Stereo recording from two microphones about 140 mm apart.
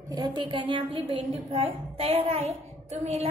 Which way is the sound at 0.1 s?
30° right (ahead or behind).